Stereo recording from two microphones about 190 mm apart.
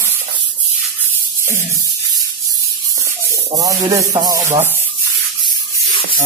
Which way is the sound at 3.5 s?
15° right (ahead or behind).